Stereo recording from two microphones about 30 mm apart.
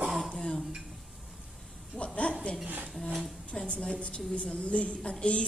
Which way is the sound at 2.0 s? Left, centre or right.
Left.